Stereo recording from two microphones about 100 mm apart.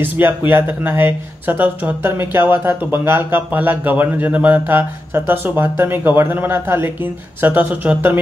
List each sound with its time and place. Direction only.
0.5 s speech: 20° right (ahead or behind)